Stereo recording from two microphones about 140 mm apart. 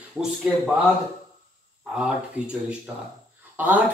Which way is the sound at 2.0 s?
5° right (ahead or behind).